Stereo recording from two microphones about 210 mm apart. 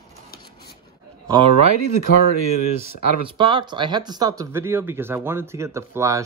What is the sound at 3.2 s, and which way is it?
Speech, 20° right (ahead or behind).